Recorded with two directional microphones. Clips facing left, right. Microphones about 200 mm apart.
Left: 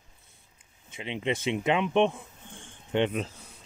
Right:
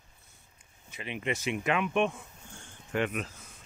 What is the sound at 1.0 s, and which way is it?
Speech, 25° left (ahead or behind).